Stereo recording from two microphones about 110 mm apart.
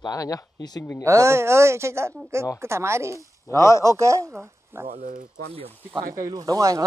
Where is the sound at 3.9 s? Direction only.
30° right (ahead or behind).